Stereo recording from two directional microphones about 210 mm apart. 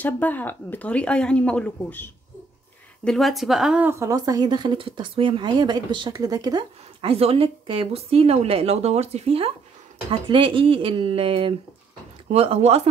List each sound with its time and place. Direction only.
0.0 s a woman's voice: 10° left (ahead or behind); by 12.8 s 30° right (ahead or behind)